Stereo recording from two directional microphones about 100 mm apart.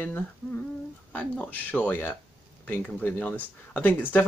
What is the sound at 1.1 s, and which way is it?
Speech, 15° left (ahead or behind).